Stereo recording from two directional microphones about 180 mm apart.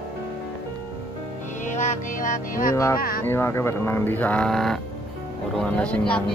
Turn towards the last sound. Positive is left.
turn(degrees=5)  # may be behind; listen again after turning